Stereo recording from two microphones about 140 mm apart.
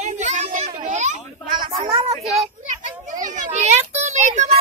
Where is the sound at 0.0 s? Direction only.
60° right (ahead or behind).